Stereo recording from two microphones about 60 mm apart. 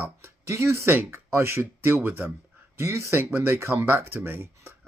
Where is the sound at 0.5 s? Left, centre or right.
Right.